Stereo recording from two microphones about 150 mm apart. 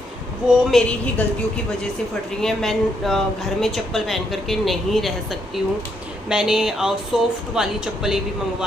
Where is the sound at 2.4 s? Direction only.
5° left (ahead or behind).